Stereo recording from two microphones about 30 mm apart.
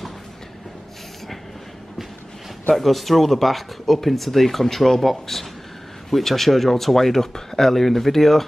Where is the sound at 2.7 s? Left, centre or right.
Centre.